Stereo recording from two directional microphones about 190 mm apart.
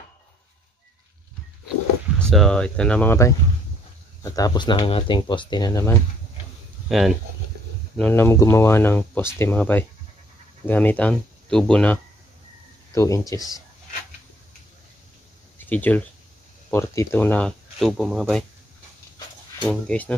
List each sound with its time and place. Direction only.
2.1 s speech: centre (ahead or behind); by 5.9 s 20° left (ahead or behind)
6.9 s speech: centre (ahead or behind)
8.0 s speech: 10° left (ahead or behind)
12.9 s speech: 15° left (ahead or behind)
15.6 s speech: 10° left (ahead or behind)
19.9 s speech: 5° left (ahead or behind)